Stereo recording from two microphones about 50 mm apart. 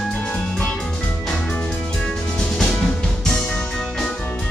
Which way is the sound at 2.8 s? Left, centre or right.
Centre.